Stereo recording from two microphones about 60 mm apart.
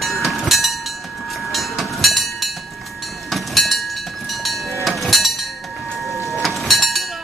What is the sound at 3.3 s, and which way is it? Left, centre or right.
Vehicle, centre.